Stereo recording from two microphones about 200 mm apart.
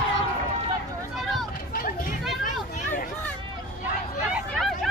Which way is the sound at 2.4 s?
40° left (ahead or behind).